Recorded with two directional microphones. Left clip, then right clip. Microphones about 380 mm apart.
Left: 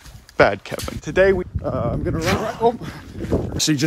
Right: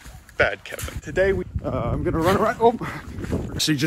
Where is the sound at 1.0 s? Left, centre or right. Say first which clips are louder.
Left 5 dB; left.